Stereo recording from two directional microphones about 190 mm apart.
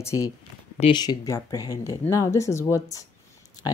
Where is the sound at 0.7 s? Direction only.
25° left (ahead or behind).